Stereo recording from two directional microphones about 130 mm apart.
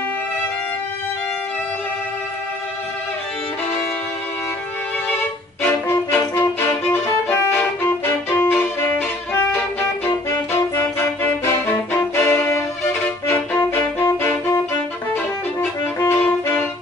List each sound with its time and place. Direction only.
5.6 s violin: 20° left (ahead or behind)
10.0 s music: 15° left (ahead or behind)
13.3 s violin: 15° left (ahead or behind)
16.0 s music: 15° left (ahead or behind)